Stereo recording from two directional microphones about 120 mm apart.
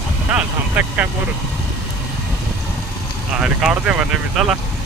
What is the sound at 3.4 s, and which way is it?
Speech, 5° right (ahead or behind).